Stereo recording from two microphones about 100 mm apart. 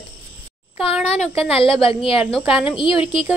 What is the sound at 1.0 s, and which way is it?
Speech, 75° left (ahead or behind).